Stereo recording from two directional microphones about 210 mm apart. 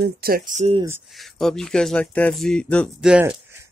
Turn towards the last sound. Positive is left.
turn(degrees=-10)  # may be behind; listen again after turning